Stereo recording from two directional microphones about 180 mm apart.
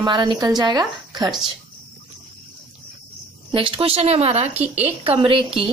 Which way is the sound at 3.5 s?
30° right (ahead or behind).